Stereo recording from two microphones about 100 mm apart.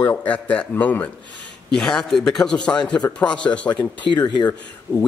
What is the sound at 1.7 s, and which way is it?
A man's voice, 5° left (ahead or behind).